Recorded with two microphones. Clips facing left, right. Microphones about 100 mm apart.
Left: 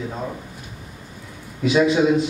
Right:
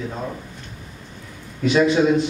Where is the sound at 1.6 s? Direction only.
5° left (ahead or behind).